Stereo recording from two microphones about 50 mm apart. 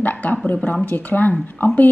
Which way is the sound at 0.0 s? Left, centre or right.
Left.